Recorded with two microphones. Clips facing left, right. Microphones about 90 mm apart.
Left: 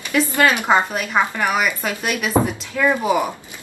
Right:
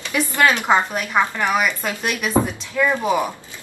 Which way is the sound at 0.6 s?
Centre (ahead or behind).